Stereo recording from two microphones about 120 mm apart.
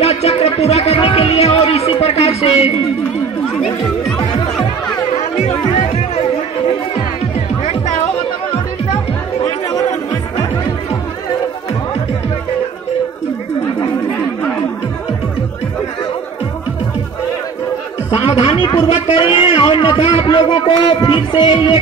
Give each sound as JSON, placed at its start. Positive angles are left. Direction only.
{"t": 0.0, "sound": "music", "side_deg": 55}
{"t": 5.1, "sound": "music", "side_deg": 60}
{"t": 18.2, "sound": "a man's voice", "side_deg": 50}